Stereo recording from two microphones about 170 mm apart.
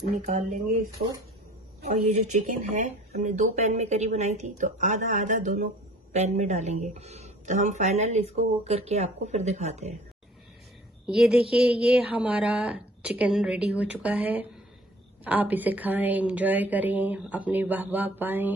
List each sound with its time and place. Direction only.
0.1 s speech: 45° right (ahead or behind)
1.9 s speech: 45° right (ahead or behind)
11.1 s a woman's voice: 5° right (ahead or behind)